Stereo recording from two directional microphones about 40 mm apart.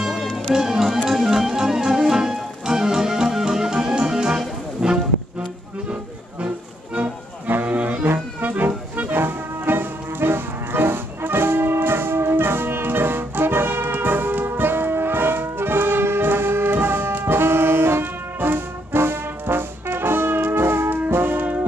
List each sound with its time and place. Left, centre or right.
0.0 s music: centre
7.4 s music: right
13.9 s music: right
17.1 s brass instrument: right